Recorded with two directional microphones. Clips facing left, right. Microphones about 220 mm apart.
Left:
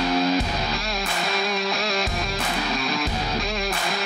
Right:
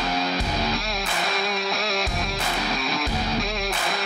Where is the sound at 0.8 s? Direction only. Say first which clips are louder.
Even; centre (ahead or behind).